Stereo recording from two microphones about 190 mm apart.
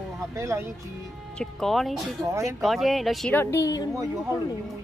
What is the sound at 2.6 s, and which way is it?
Speech, centre (ahead or behind).